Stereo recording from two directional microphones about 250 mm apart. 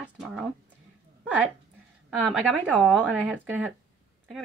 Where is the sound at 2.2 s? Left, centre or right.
Centre.